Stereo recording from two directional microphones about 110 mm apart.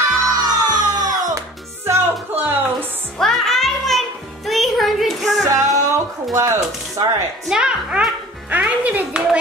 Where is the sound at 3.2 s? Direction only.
5° left (ahead or behind).